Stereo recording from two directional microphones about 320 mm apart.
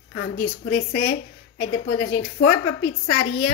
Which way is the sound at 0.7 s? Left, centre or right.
Left.